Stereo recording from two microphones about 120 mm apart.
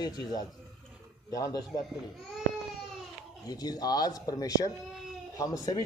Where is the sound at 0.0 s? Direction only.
35° left (ahead or behind).